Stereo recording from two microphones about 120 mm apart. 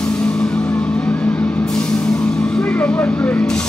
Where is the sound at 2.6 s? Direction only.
15° left (ahead or behind).